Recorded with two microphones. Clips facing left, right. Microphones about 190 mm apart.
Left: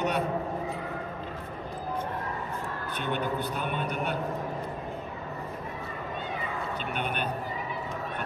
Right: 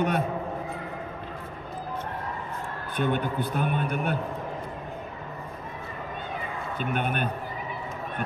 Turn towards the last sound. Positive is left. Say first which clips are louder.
# right 4 dB
turn(degrees=-50)  # may be behind; listen again after turning